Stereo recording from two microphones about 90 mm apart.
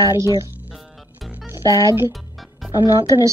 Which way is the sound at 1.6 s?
40° left (ahead or behind).